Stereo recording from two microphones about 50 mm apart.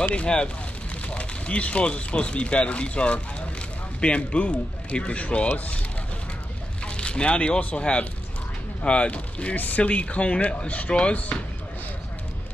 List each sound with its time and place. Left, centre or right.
0.1 s speech: left
6.8 s speech: centre